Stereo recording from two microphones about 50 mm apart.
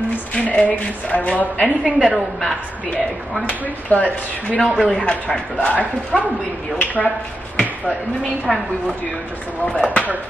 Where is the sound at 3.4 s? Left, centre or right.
Left.